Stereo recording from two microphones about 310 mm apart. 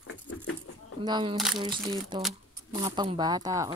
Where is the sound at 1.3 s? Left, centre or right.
Centre.